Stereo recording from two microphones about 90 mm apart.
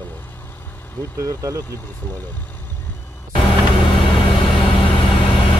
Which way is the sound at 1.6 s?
25° left (ahead or behind).